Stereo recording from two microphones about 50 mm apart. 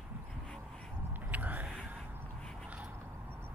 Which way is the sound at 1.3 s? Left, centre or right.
Right.